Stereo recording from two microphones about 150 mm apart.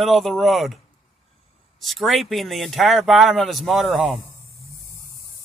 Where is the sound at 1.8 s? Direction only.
Centre (ahead or behind).